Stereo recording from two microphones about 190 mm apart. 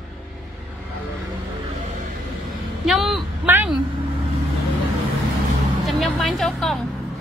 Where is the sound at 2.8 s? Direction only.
Centre (ahead or behind).